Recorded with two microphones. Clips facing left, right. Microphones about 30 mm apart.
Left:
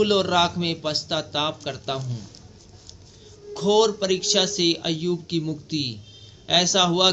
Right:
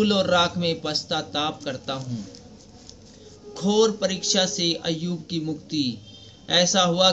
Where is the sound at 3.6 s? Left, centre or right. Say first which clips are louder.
Left 3 dB; left.